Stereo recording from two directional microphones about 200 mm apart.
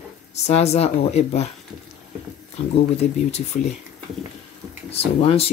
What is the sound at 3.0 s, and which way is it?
Speech, 30° left (ahead or behind).